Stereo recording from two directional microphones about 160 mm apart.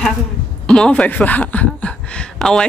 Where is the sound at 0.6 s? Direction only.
5° left (ahead or behind).